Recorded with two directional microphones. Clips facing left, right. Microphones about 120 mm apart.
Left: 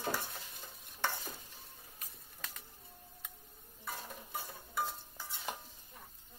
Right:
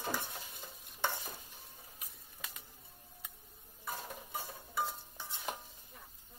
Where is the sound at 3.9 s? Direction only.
Centre (ahead or behind).